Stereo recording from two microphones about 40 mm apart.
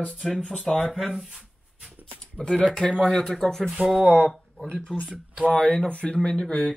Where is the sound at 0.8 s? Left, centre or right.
Centre.